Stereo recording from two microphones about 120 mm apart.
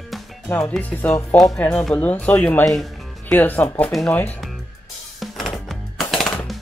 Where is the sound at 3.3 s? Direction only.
15° left (ahead or behind).